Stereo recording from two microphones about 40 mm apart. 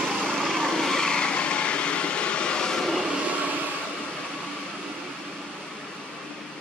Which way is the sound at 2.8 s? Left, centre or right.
Centre.